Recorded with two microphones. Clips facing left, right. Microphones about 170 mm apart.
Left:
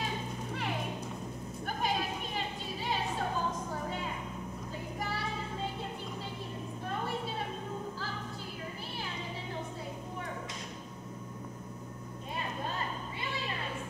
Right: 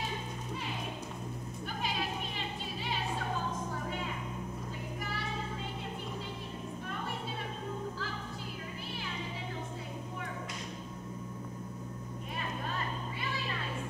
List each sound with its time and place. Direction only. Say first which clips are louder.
1.7 s music: left 3 dB; 45° left (ahead or behind)